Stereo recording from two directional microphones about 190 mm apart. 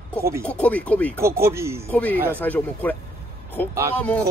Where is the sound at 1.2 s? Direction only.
15° right (ahead or behind).